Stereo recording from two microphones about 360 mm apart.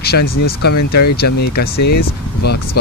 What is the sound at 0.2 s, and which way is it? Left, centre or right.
Speech, left.